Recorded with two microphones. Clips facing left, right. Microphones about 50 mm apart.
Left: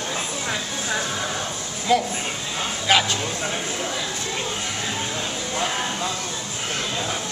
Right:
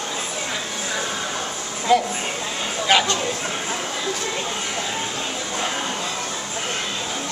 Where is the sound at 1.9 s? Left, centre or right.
Centre.